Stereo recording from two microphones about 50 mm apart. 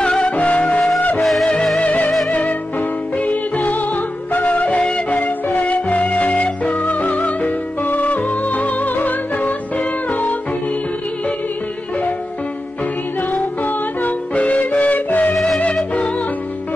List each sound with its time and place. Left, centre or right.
0.0 s music: centre
1.2 s music: centre
1.8 s music: left
2.0 s music: centre
3.2 s music: left
9.8 s music: left
13.3 s music: left
15.3 s music: centre
15.7 s music: left